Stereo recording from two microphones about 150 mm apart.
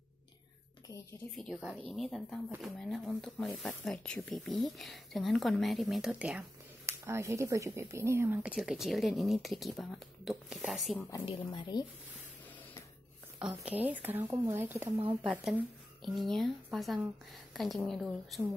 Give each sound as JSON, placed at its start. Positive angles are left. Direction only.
{"t": 1.3, "sound": "speech", "side_deg": 0}
{"t": 6.9, "sound": "speech", "side_deg": -20}
{"t": 11.0, "sound": "a woman's voice", "side_deg": 20}
{"t": 11.2, "sound": "speech", "side_deg": 30}
{"t": 13.4, "sound": "speech", "side_deg": -10}
{"t": 15.4, "sound": "speech", "side_deg": 0}